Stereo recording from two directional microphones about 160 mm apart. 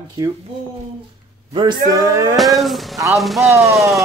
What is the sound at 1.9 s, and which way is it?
Speech, 20° right (ahead or behind).